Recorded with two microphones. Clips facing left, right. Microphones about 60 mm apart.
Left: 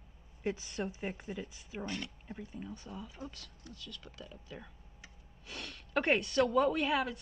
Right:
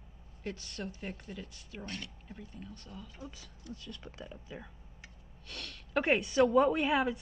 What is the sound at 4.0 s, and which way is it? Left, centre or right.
Speech, right.